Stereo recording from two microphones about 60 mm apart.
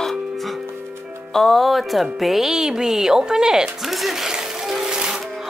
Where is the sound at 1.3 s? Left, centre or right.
Centre.